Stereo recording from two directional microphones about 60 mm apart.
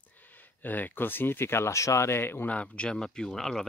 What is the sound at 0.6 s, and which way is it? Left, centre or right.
Speech, left.